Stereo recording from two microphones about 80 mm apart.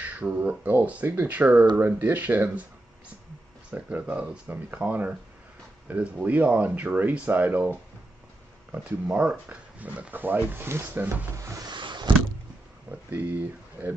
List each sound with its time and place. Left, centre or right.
0.0 s speech: centre
3.7 s speech: centre
8.7 s speech: centre
11.3 s a sound: right
11.7 s vehicle: right
13.1 s speech: right